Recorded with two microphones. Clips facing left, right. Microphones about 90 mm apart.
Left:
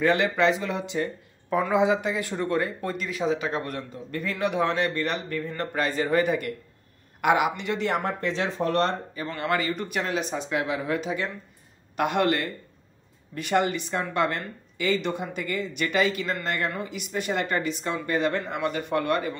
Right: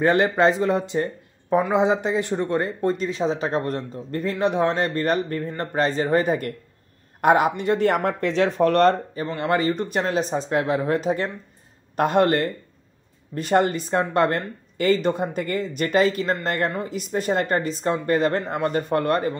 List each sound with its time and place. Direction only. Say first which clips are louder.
0.0 s speech: right 4 dB; 35° right (ahead or behind)
8.2 s speech: right 7 dB; 70° right (ahead or behind)
9.3 s speech: right 5 dB; 30° right (ahead or behind)